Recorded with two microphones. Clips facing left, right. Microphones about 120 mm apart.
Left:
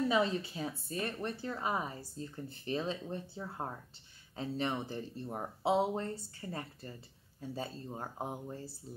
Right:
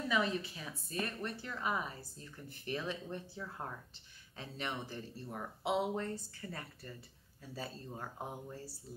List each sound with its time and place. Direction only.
0.1 s a woman's voice: 30° left (ahead or behind)
5.3 s a woman's voice: 30° left (ahead or behind)